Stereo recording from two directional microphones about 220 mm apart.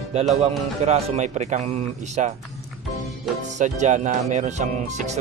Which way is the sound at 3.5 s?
30° right (ahead or behind).